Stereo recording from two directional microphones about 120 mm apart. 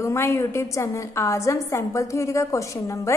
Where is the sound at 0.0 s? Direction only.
25° left (ahead or behind).